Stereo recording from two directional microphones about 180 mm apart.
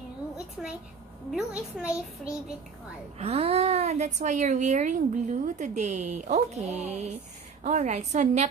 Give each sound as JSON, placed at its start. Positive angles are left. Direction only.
{"t": 0.6, "sound": "a sound", "side_deg": -5}
{"t": 1.3, "sound": "a woman's voice", "side_deg": -5}
{"t": 3.2, "sound": "a woman's voice", "side_deg": -35}